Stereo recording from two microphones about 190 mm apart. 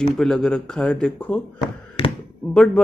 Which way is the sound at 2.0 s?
30° left (ahead or behind).